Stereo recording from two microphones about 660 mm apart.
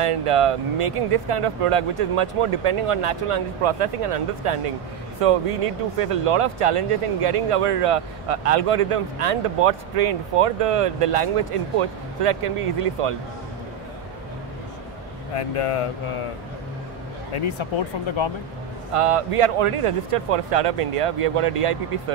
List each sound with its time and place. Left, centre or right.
0.0 s speech: right
15.3 s speech: left
17.3 s speech: left
18.9 s speech: right